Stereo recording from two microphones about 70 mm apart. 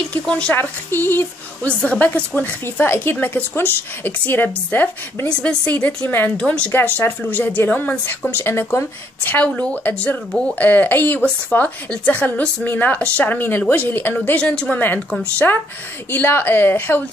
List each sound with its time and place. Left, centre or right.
0.1 s a woman's voice: centre
0.6 s a woman's voice: left
1.8 s a woman's voice: left
2.6 s a woman's voice: left
5.3 s a woman's voice: centre
6.7 s a woman's voice: left
15.3 s a woman's voice: left